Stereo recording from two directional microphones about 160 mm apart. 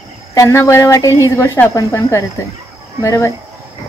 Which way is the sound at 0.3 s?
20° left (ahead or behind).